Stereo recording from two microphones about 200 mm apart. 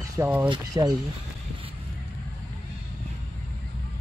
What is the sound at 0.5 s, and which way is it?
Speech, 20° right (ahead or behind).